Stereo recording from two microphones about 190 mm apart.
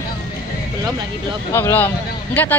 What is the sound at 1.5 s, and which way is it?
Speech, 10° left (ahead or behind).